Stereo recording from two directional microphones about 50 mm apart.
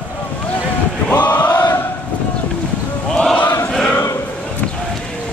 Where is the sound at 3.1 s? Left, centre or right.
Centre.